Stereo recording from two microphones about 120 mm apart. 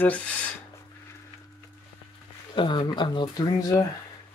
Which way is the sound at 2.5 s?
40° left (ahead or behind).